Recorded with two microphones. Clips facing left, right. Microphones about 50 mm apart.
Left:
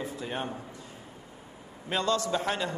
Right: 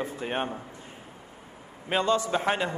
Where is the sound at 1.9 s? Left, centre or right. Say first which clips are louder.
Right 3 dB; right.